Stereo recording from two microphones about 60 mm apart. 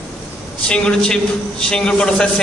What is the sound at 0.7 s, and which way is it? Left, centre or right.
A man's voice, centre.